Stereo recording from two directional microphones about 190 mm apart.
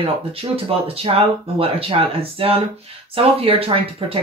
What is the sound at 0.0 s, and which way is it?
Speech, 30° right (ahead or behind).